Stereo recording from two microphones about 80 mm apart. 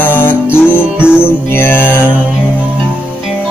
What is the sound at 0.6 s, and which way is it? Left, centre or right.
Music, centre.